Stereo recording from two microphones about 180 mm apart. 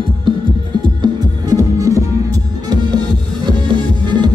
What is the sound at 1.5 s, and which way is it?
Music, 20° right (ahead or behind).